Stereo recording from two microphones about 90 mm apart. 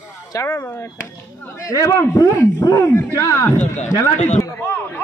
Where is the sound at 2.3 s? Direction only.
50° left (ahead or behind).